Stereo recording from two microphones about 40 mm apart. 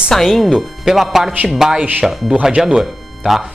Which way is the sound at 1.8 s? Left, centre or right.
Right.